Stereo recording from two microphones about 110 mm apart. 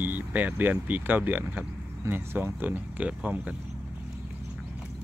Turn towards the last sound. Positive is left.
turn(degrees=-10)  # may be behind; listen again after turning